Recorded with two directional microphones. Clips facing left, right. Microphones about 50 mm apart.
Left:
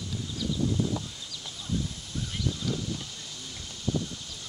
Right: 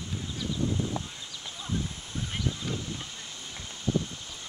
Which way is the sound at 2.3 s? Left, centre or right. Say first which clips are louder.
Left 1 dB; right.